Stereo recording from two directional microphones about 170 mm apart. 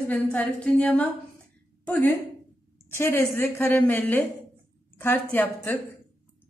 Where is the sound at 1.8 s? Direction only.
10° left (ahead or behind).